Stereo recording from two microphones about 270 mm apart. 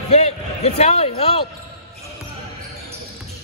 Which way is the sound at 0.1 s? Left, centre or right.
Left.